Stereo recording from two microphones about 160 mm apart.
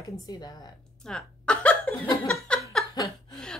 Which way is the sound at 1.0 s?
5° left (ahead or behind).